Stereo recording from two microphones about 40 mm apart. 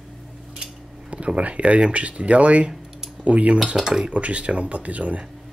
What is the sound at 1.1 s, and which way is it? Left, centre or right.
Speech, right.